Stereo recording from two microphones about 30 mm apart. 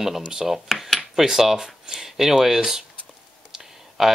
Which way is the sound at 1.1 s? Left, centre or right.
Centre.